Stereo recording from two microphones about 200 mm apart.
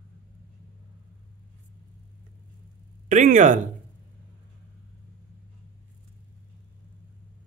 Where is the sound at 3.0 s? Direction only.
40° right (ahead or behind).